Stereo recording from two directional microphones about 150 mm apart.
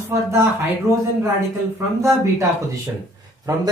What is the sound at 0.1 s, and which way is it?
Speech, 15° right (ahead or behind).